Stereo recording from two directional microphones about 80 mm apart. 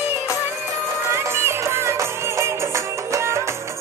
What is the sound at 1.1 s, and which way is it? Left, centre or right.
Music, right.